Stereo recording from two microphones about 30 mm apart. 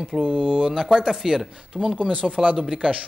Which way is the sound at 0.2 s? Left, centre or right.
Right.